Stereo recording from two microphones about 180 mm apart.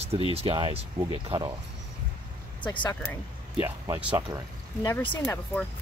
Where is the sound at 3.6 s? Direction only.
20° right (ahead or behind).